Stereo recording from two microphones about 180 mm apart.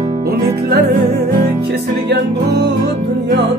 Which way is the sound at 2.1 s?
70° right (ahead or behind).